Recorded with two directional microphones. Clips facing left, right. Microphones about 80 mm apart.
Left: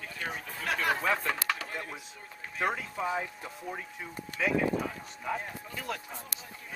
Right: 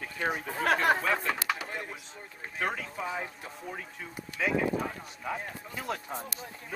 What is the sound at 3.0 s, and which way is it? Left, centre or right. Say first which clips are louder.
Speech: left 3 dB; centre.